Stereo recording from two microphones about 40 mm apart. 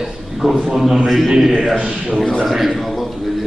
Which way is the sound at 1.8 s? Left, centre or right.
Right.